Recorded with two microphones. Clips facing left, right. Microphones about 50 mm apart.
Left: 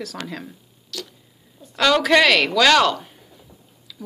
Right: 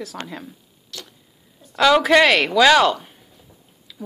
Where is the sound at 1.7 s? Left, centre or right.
Centre.